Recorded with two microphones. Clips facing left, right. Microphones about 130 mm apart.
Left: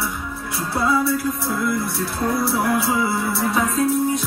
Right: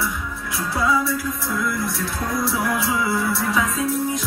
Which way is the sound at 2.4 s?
55° left (ahead or behind).